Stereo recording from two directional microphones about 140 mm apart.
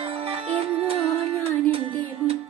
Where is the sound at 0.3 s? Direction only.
45° right (ahead or behind).